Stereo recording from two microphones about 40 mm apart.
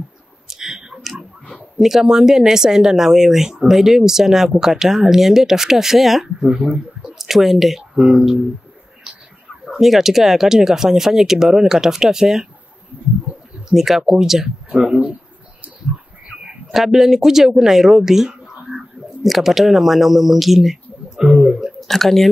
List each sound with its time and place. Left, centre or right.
0.5 s clicking: centre
1.6 s speech: centre
6.4 s speech: centre
7.2 s speech: centre
9.7 s speech: centre
13.7 s speech: centre
16.7 s speech: centre
18.7 s a sound: centre
19.2 s speech: centre
21.2 s a sound: centre
21.7 s speech: centre